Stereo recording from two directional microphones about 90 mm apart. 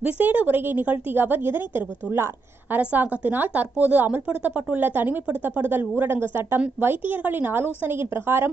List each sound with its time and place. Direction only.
0.0 s a woman's voice: 15° right (ahead or behind)